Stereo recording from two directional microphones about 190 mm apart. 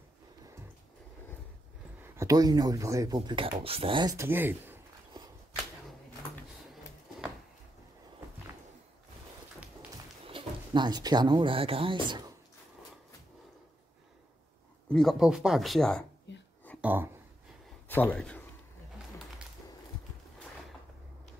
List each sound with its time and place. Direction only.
2.0 s speech: 15° right (ahead or behind)
6.7 s a sound: centre (ahead or behind)
10.2 s speech: 25° right (ahead or behind)
14.9 s speech: centre (ahead or behind)
16.3 s whispering: 70° left (ahead or behind)
16.8 s speech: 10° right (ahead or behind)
17.8 s a man's voice: 10° left (ahead or behind)